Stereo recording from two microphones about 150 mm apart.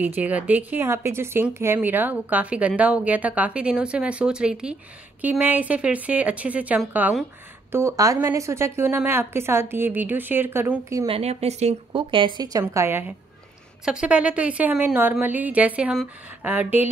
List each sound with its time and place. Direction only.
0.0 s speech: 10° right (ahead or behind)
11.1 s speech: 45° right (ahead or behind); by 16.9 s 10° right (ahead or behind)